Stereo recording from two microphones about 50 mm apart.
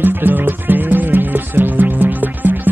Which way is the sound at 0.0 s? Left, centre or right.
Right.